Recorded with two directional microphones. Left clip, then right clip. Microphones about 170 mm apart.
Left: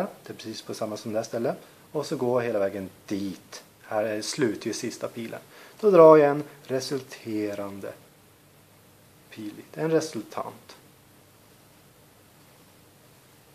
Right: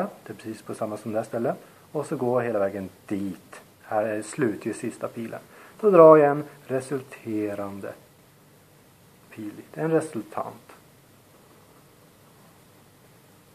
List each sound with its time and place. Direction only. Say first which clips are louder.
0.0 s speech: right 1 dB; 35° left (ahead or behind)
9.3 s speech: right 1 dB; 40° left (ahead or behind)